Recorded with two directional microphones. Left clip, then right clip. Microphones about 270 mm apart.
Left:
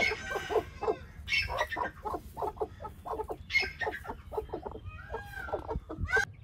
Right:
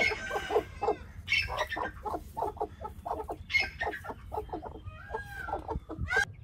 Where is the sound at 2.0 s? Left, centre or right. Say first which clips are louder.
Right 1 dB; centre.